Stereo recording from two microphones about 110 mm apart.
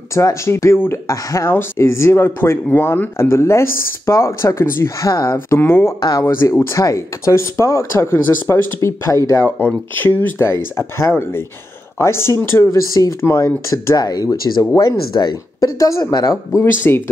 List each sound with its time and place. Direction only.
0.1 s speech: 25° left (ahead or behind)
5.9 s speech: 40° left (ahead or behind)
6.5 s speech: 25° left (ahead or behind)
9.6 s speech: 15° left (ahead or behind); by 16.6 s 35° left (ahead or behind)
16.8 s speech: 20° left (ahead or behind)